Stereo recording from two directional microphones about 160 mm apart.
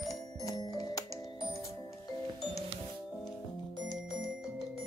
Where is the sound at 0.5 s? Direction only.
20° left (ahead or behind).